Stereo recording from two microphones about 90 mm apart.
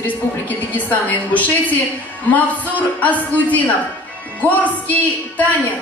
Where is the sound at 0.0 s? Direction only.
20° left (ahead or behind).